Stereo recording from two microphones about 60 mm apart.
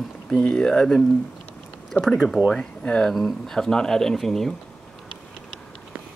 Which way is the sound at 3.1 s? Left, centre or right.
Centre.